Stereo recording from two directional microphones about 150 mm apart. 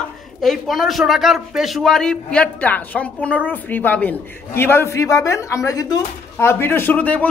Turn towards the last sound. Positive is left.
turn(degrees=10)  # may be behind; listen again after turning